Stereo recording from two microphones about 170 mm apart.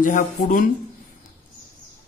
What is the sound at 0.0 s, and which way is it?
Speech, 50° left (ahead or behind).